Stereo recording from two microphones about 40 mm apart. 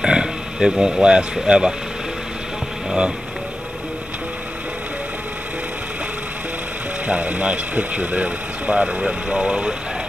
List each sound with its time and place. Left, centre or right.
0.0 s a sound: centre
1.3 s speech: centre
7.1 s speech: right
8.8 s speech: right